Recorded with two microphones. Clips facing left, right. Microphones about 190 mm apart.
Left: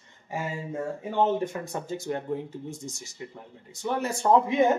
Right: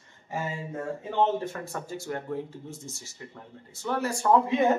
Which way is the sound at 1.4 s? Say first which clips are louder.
Left 3 dB; 20° left (ahead or behind).